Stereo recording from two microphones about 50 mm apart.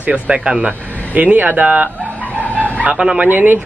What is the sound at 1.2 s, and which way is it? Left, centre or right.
Speech, right.